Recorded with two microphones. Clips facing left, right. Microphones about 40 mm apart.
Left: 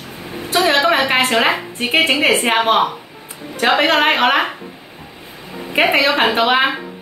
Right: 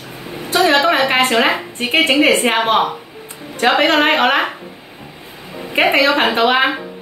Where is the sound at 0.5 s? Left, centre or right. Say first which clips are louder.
Right 1 dB; centre.